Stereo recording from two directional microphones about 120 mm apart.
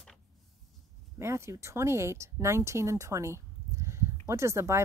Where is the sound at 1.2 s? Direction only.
20° right (ahead or behind).